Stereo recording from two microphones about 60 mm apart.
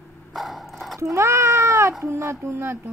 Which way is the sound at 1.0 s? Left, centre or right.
Right.